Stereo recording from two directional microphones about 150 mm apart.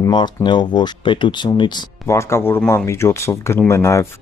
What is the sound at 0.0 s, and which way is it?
Speech, 30° left (ahead or behind).